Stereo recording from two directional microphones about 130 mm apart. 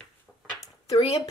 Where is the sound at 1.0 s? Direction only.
55° left (ahead or behind).